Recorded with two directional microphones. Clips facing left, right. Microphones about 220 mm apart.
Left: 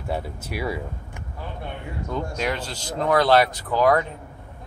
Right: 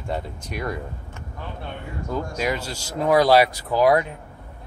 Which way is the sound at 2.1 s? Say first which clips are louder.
Right 1 dB; 5° right (ahead or behind).